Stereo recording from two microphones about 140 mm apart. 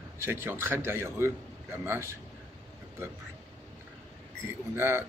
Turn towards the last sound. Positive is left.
turn(degrees=-15)  # may be behind; listen again after turning